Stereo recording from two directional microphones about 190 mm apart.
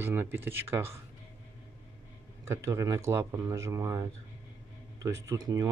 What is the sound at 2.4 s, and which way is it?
Speech, 15° right (ahead or behind).